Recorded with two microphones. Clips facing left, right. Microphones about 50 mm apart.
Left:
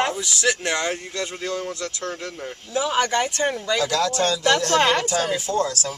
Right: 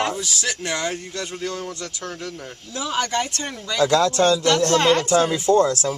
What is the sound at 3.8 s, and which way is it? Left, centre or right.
Speech, right.